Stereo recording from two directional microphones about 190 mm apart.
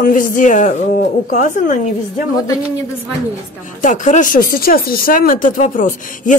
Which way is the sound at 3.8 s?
40° left (ahead or behind).